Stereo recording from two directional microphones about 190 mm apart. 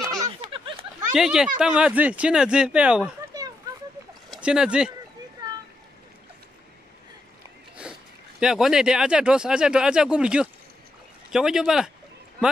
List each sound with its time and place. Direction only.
0.0 s a sound: 25° right (ahead or behind)
1.1 s speech: 5° right (ahead or behind)
4.3 s speech: 5° right (ahead or behind)
8.4 s speech: 5° right (ahead or behind)